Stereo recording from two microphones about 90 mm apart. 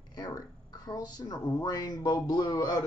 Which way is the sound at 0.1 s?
50° left (ahead or behind).